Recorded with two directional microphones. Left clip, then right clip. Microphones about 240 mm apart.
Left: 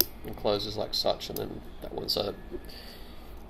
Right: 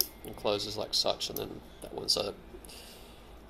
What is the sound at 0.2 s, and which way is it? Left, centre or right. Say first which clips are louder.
Speech: left 2 dB; centre.